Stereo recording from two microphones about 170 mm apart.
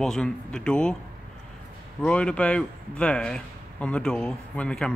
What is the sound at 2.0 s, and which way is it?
Speech, 5° left (ahead or behind).